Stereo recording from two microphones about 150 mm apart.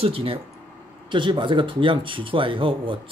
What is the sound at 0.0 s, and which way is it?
Speech, 40° right (ahead or behind).